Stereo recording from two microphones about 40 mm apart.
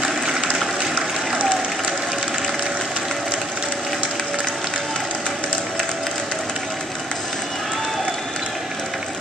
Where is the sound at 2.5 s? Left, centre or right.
Centre.